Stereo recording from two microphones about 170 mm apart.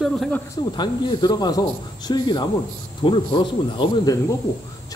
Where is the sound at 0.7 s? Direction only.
25° left (ahead or behind).